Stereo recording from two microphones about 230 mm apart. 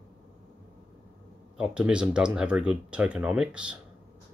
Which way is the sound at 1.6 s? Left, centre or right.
Centre.